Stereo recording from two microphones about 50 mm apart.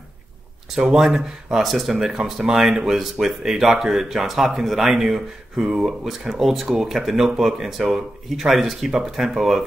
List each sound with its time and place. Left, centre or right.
0.7 s speech: centre
5.6 s speech: centre
5.9 s speech: centre